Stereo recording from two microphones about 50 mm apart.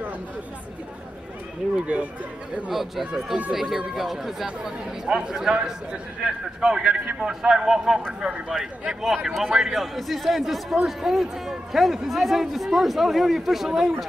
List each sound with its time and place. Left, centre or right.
1.8 s speech: right
2.7 s a man's voice: centre